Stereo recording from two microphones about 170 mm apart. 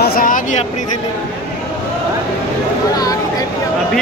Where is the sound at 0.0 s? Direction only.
60° left (ahead or behind).